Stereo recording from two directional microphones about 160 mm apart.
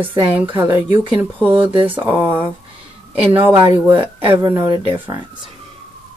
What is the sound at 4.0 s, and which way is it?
Speech, 30° right (ahead or behind).